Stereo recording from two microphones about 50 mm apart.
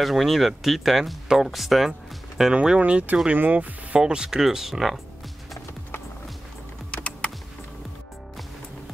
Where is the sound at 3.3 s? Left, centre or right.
Right.